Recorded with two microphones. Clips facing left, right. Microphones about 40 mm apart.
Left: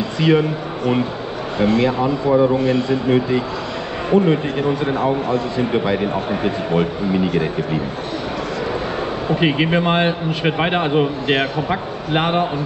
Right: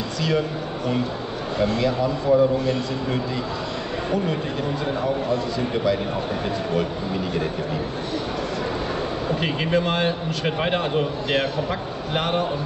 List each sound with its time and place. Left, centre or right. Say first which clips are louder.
0.2 s a man's voice: left 8 dB; left
5.6 s a man's voice: left 4 dB; left
9.3 s a man's voice: left 6 dB; left